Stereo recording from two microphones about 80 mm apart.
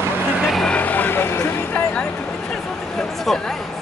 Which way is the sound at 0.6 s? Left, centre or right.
Centre.